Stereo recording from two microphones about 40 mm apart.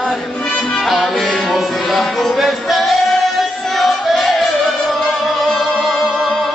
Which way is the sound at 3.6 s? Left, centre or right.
Centre.